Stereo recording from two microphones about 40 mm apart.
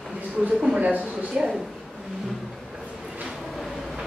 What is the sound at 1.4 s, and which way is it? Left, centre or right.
Speech, centre.